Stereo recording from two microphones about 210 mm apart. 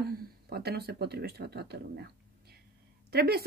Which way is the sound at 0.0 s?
45° right (ahead or behind).